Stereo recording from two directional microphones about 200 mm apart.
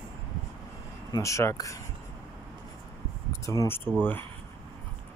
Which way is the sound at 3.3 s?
15° left (ahead or behind).